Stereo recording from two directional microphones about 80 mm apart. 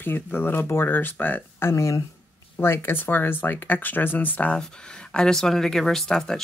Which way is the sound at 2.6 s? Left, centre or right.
Left.